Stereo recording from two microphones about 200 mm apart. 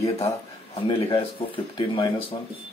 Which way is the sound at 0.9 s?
25° left (ahead or behind).